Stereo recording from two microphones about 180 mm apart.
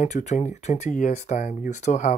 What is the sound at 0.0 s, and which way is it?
Speech, 40° left (ahead or behind).